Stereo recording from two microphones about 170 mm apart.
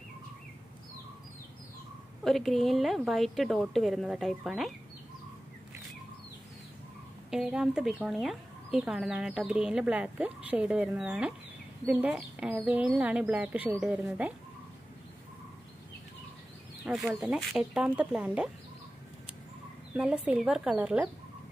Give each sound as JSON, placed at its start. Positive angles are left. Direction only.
{"t": 2.2, "sound": "speech", "side_deg": 0}
{"t": 7.2, "sound": "speech", "side_deg": -5}
{"t": 16.8, "sound": "speech", "side_deg": 0}
{"t": 19.9, "sound": "speech", "side_deg": -5}